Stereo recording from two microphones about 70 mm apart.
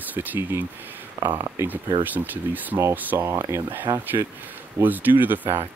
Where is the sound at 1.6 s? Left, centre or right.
Right.